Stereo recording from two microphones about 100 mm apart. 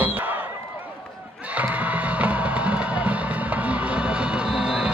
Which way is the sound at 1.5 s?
15° right (ahead or behind).